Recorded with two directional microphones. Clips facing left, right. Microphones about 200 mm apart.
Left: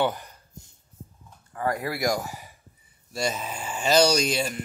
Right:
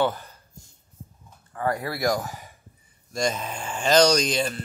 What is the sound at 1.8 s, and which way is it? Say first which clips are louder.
Speech: right 1 dB; 15° left (ahead or behind).